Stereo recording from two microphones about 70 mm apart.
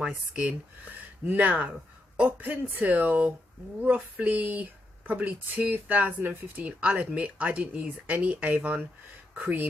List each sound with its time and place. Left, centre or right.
0.0 s speech: centre
1.2 s speech: right